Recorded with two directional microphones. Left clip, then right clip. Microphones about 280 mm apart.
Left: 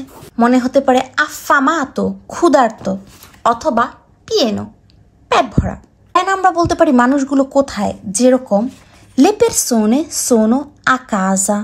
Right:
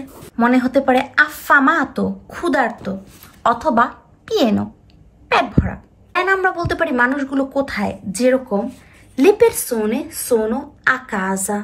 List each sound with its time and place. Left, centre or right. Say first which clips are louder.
0.1 s a woman's voice: left 3 dB; centre